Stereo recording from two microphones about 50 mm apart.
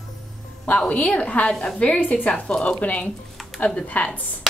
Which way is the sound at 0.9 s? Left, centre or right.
Left.